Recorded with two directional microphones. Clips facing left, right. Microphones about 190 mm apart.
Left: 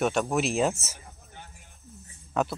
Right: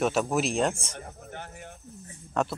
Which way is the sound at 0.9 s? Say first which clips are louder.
Right 9 dB; 65° right (ahead or behind).